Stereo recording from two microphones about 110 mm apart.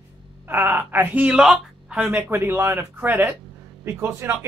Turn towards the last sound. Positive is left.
turn(degrees=-20)  # may be behind; listen again after turning